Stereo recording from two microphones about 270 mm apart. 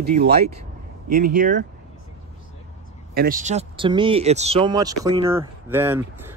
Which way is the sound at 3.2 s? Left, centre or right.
Right.